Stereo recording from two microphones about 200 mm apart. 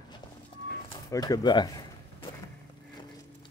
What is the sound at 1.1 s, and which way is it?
Speech, 20° left (ahead or behind).